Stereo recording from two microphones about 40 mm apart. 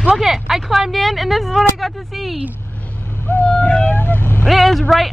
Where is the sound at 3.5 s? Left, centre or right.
Left.